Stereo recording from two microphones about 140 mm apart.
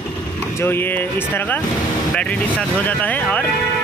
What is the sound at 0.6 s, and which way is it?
Speech, 15° left (ahead or behind).